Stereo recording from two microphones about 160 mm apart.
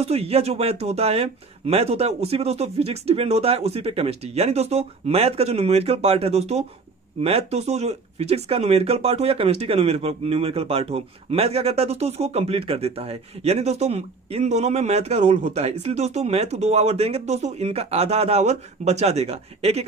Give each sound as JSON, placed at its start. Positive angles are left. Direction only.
{"t": 0.0, "sound": "speech", "side_deg": -40}